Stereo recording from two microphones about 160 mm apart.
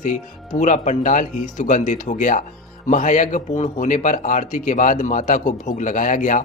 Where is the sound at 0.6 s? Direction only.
50° left (ahead or behind).